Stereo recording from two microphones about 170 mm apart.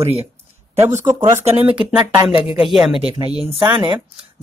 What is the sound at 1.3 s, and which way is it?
Speech, 15° right (ahead or behind).